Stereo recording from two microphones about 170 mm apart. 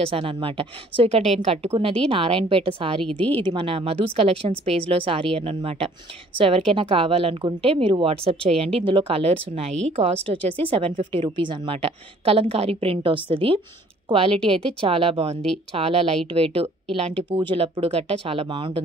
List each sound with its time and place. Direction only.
0.0 s a woman's voice: 30° right (ahead or behind)
3.1 s speech: 10° left (ahead or behind)
3.3 s a woman's voice: 30° right (ahead or behind)